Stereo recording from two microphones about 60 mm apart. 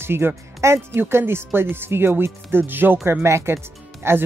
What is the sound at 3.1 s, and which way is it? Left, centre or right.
Speech, right.